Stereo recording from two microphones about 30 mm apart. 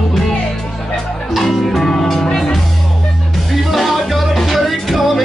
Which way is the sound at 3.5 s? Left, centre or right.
Centre.